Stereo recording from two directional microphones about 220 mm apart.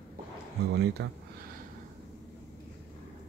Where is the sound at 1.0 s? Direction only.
55° right (ahead or behind).